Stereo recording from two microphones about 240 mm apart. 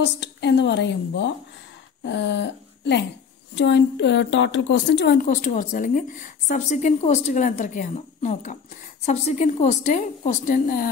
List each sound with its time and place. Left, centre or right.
0.0 s a woman's voice: left